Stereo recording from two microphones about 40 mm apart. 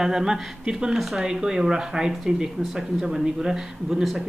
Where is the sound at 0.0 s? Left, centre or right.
Centre.